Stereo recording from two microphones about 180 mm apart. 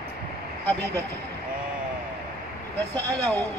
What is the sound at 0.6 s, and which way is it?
Speech, 10° left (ahead or behind).